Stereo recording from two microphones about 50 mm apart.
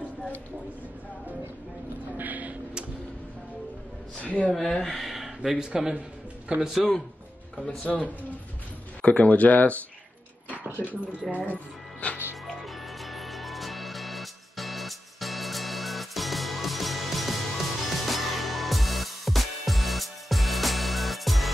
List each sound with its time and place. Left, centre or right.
2.1 s vehicle: right
4.2 s a woman's voice: left
4.8 s a man's voice: centre
7.5 s speech: centre
9.0 s a man's voice: left
10.8 s speech: right
11.3 s speech: left
12.6 s music: centre